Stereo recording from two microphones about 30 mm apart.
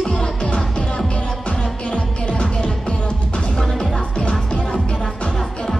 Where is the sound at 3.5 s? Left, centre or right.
Centre.